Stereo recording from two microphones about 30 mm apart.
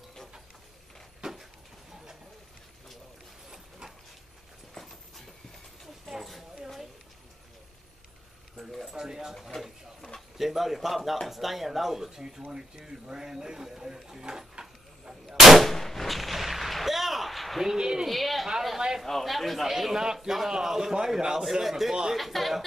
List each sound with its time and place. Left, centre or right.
1.2 s a sound: right
4.7 s a sound: centre
8.9 s a man's voice: centre
9.5 s speech: centre
10.3 s a man's voice: centre
15.2 s gunshot: centre
15.6 s gunshot: centre
17.7 s speech: right
18.0 s speech: centre
19.6 s a man's voice: centre